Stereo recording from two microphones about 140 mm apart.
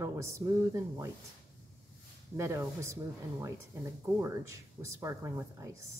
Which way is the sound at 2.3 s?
20° right (ahead or behind).